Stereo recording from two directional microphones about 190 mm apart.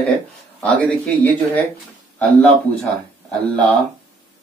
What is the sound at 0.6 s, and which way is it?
Speech, 10° left (ahead or behind).